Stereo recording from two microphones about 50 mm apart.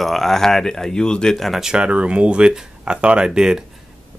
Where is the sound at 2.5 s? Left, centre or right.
Centre.